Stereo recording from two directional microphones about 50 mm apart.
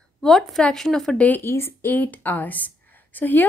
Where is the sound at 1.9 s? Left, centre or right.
Left.